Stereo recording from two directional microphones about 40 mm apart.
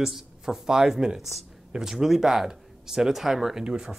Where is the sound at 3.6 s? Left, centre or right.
Right.